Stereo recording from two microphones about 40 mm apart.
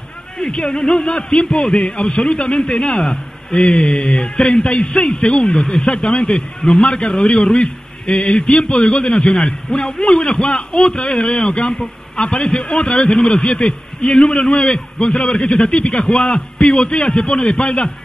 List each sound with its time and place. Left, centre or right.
0.7 s a man's voice: centre
5.4 s a man's voice: centre